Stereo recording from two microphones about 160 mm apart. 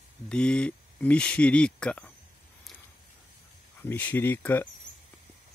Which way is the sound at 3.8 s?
10° left (ahead or behind).